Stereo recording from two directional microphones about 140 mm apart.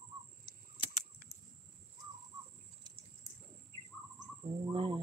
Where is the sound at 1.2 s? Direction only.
65° left (ahead or behind).